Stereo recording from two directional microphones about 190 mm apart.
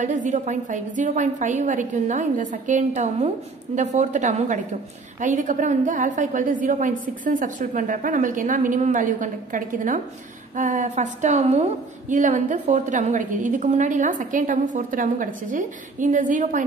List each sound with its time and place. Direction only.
0.0 s a woman's voice: 40° right (ahead or behind)